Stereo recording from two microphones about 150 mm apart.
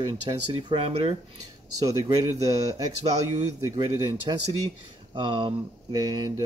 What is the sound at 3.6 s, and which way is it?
Speech, 25° right (ahead or behind).